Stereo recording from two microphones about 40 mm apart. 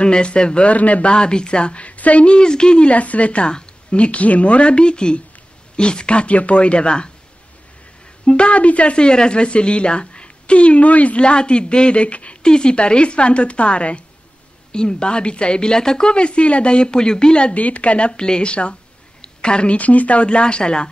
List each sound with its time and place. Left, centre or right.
0.0 s speech: left
0.7 s a woman's voice: left
1.1 s speech: left
2.9 s a woman's voice: left
8.3 s speech: left
12.4 s speech: left
17.6 s speech: left
19.2 s a sound: left
19.8 s speech: left